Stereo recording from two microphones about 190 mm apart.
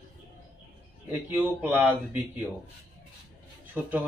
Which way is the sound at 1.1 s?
10° right (ahead or behind).